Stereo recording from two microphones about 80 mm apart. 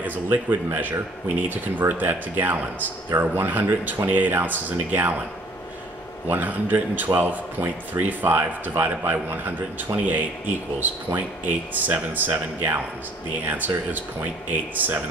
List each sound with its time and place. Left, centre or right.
0.0 s speech: right
6.2 s speech: right